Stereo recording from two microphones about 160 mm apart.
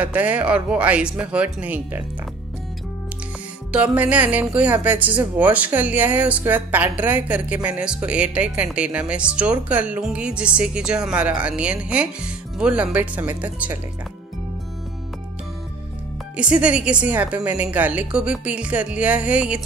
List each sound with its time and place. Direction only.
0.0 s speech: 10° right (ahead or behind)
3.7 s speech: 10° right (ahead or behind)
16.3 s speech: 5° right (ahead or behind)